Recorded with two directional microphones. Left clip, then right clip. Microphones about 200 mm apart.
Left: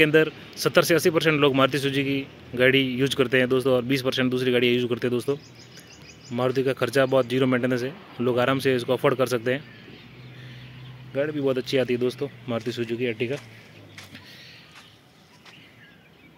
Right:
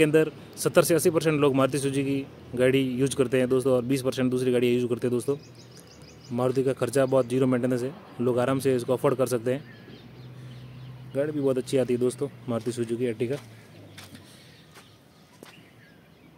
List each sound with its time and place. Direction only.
0.0 s a man's voice: centre (ahead or behind)
11.1 s speech: centre (ahead or behind)